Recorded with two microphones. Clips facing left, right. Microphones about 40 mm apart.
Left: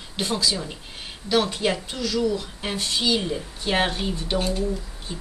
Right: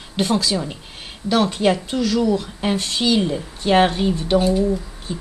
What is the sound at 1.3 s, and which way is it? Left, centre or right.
Speech, centre.